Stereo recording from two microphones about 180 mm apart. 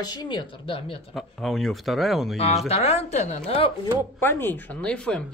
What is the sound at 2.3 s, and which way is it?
Speech, 35° left (ahead or behind).